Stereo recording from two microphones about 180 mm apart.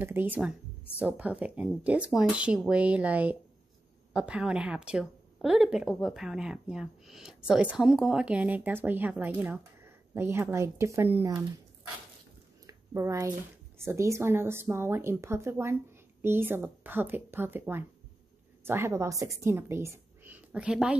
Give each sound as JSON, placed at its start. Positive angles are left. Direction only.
{"t": 0.0, "sound": "a woman's voice", "side_deg": -10}
{"t": 12.6, "sound": "a sound", "side_deg": -15}
{"t": 13.7, "sound": "a woman's voice", "side_deg": -15}